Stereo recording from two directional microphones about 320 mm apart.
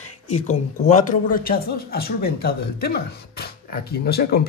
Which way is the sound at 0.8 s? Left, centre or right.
Left.